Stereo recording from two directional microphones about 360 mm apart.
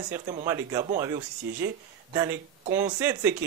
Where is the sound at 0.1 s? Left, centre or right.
Centre.